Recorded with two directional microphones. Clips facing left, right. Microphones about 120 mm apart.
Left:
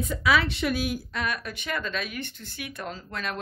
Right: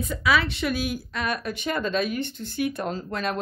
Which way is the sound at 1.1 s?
35° right (ahead or behind).